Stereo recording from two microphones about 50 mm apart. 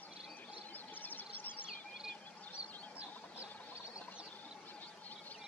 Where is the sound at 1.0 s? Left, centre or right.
Left.